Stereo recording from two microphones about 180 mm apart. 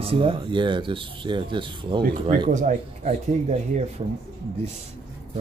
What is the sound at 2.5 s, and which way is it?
Speech, 45° right (ahead or behind).